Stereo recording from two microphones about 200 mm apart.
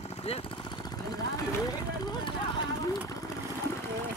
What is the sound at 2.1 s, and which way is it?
Vehicle, 25° left (ahead or behind).